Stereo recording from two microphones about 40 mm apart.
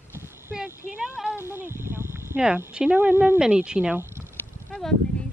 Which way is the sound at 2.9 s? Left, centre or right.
Right.